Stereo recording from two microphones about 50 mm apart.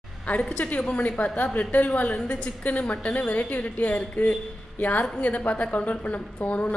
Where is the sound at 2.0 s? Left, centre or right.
Left.